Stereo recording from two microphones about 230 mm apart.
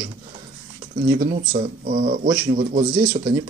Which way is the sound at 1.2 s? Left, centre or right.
Right.